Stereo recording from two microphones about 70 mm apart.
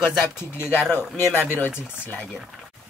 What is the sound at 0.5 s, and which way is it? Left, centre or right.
Speech, left.